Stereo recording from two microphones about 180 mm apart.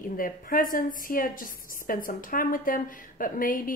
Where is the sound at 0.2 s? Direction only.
50° left (ahead or behind).